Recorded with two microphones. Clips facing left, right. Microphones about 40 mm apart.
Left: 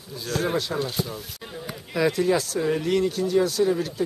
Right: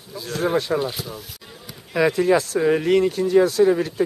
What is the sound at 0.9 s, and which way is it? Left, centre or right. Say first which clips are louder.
Speech: left 2 dB; centre.